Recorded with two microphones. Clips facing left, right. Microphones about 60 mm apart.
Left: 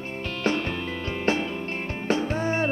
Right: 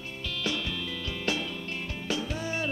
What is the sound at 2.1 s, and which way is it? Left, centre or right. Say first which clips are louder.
Music: left 8 dB; left.